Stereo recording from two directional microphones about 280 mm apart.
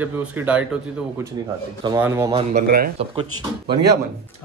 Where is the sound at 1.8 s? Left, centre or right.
Centre.